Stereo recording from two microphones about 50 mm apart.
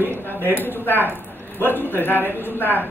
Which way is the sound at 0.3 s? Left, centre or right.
Left.